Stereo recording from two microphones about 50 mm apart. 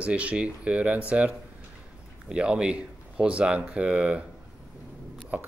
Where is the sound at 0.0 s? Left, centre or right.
Right.